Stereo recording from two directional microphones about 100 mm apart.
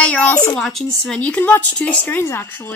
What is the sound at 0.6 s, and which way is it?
Speech, 5° left (ahead or behind).